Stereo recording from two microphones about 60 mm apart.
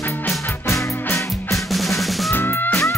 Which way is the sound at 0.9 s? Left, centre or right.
Left.